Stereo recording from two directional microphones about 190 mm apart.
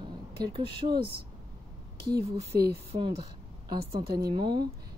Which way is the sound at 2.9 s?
25° right (ahead or behind).